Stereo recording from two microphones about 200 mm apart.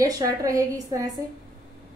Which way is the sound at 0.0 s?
15° right (ahead or behind).